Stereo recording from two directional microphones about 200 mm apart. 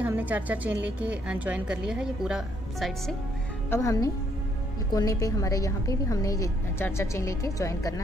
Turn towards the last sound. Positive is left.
turn(degrees=15)  # may be behind; listen again after turning